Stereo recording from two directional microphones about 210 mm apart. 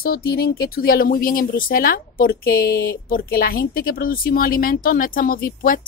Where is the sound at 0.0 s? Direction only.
45° left (ahead or behind).